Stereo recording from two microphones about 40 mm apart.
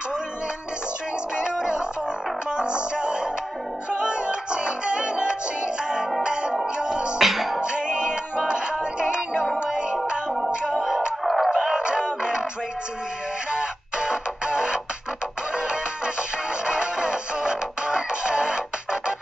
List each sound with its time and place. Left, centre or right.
1.3 s music: right
6.6 s music: right
7.2 s music: centre
7.6 s music: right
11.2 s music: centre
11.5 s music: centre
13.6 s music: right
16.6 s music: right